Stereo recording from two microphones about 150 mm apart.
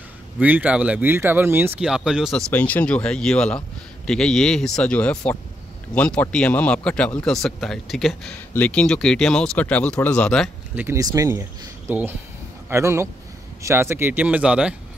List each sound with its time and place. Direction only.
0.4 s speech: 10° right (ahead or behind)
1.8 s a man's voice: 5° right (ahead or behind)
2.5 s a man's voice: 10° left (ahead or behind)
10.8 s speech: 20° right (ahead or behind)